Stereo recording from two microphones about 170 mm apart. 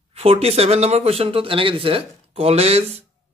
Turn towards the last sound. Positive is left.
turn(degrees=-35)  # may be behind; listen again after turning